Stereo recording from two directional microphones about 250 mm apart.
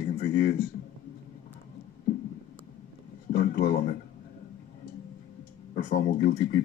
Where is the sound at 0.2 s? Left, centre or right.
Left.